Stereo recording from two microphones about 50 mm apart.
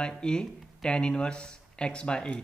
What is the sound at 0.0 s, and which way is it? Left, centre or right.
Speech, centre.